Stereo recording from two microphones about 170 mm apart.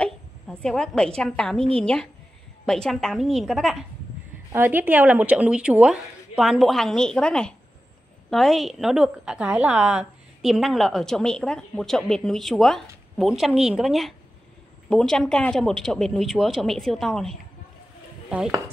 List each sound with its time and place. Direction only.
0.0 s a woman's voice: 5° left (ahead or behind)
4.5 s a woman's voice: 10° right (ahead or behind)